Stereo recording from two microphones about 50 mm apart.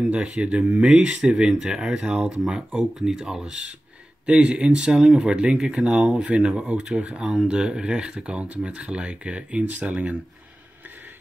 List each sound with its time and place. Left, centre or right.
0.1 s speech: right
1.3 s speech: centre; by 10.1 s right